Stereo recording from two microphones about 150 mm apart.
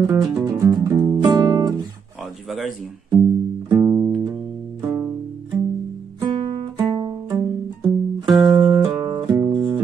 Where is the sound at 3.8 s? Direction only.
20° right (ahead or behind).